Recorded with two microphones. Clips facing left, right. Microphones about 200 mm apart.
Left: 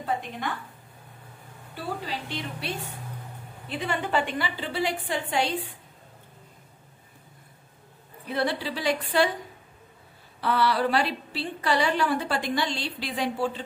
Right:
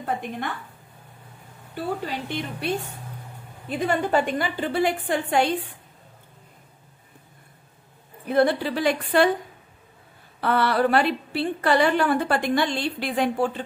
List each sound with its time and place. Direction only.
0.0 s a woman's voice: 50° right (ahead or behind)
2.0 s a woman's voice: 50° right (ahead or behind)
8.3 s a woman's voice: 50° right (ahead or behind)
10.4 s a woman's voice: 55° right (ahead or behind)